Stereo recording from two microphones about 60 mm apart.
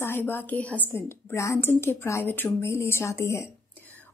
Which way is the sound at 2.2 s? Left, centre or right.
Left.